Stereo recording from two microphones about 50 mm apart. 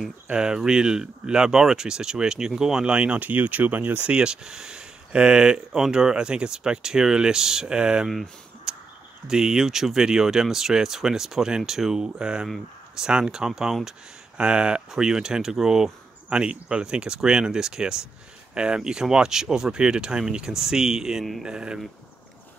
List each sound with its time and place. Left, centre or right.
0.3 s speech: centre
3.2 s speech: right
4.0 s speech: centre
8.7 s a sound: centre
9.3 s speech: centre
14.3 s speech: centre